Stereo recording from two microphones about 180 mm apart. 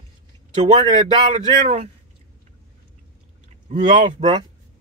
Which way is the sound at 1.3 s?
40° right (ahead or behind).